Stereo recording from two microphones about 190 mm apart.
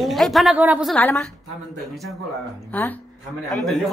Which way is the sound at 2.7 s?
10° left (ahead or behind).